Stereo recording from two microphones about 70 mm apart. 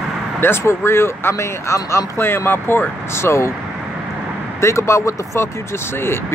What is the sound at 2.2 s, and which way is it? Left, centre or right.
Speech, left.